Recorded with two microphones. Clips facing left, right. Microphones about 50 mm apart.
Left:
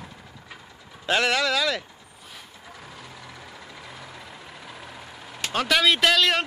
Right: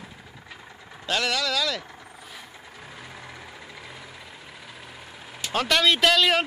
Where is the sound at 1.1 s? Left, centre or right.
Left.